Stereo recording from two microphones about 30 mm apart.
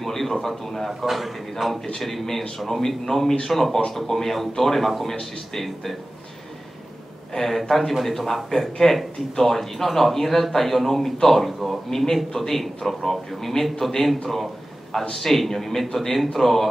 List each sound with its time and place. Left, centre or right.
0.0 s a sound: centre
1.0 s a man's voice: centre
2.9 s speech: centre
7.4 s a man's voice: centre